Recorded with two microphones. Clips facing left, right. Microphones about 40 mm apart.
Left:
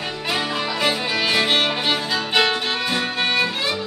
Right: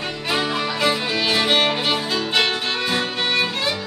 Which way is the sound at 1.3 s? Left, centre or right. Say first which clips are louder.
Right 1 dB; centre.